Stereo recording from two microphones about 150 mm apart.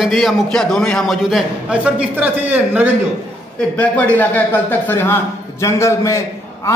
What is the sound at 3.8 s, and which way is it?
A man's voice, 10° left (ahead or behind).